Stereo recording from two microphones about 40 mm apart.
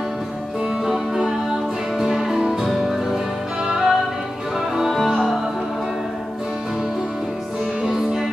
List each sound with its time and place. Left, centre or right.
0.8 s music: centre
3.6 s music: centre